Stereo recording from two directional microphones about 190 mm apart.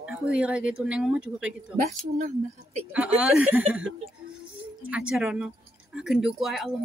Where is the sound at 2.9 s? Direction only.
5° right (ahead or behind).